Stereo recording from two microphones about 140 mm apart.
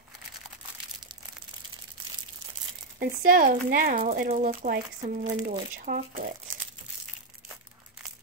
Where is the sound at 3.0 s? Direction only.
90° right.